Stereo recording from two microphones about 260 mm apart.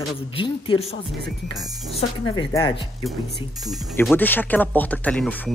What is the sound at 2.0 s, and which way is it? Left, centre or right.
Speech, centre.